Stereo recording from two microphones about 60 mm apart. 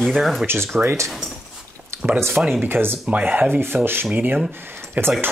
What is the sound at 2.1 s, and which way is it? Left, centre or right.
Speech, right.